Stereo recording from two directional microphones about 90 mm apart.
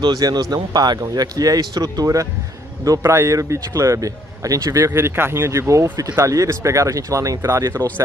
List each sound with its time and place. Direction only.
0.0 s speech: 50° right (ahead or behind); by 7.8 s 30° right (ahead or behind)